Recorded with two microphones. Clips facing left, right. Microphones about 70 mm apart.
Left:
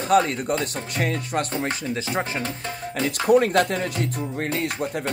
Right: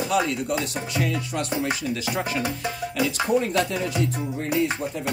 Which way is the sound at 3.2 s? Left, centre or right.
Left.